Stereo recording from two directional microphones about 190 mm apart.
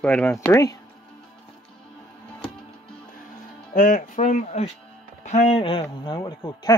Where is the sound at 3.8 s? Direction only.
45° left (ahead or behind); by 6.7 s 20° left (ahead or behind).